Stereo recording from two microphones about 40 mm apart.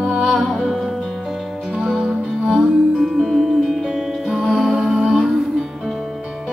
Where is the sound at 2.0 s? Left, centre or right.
Right.